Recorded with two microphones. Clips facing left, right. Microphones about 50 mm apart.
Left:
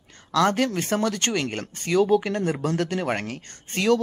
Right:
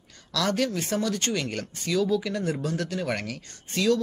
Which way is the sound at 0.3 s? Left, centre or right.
Left.